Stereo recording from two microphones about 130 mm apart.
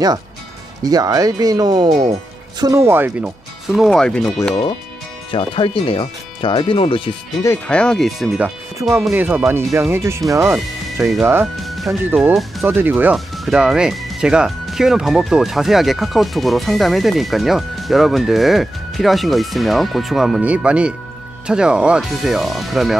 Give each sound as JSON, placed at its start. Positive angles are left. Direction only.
{"t": 0.8, "sound": "speech", "side_deg": -30}
{"t": 2.6, "sound": "speech", "side_deg": -20}
{"t": 5.3, "sound": "speech", "side_deg": 40}
{"t": 7.4, "sound": "speech", "side_deg": 15}
{"t": 9.1, "sound": "speech", "side_deg": -10}
{"t": 11.5, "sound": "music", "side_deg": 0}
{"t": 12.0, "sound": "speech", "side_deg": -15}